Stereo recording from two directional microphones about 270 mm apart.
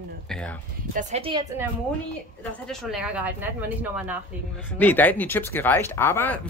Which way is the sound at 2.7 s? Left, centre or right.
Centre.